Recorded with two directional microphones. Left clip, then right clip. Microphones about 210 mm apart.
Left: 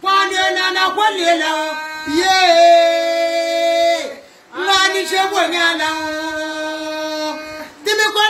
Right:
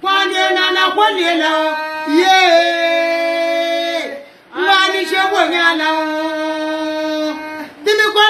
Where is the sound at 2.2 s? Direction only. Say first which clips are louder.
Right 1 dB; 15° left (ahead or behind).